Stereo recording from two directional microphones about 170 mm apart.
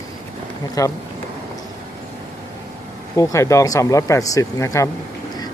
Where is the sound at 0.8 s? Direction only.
20° left (ahead or behind).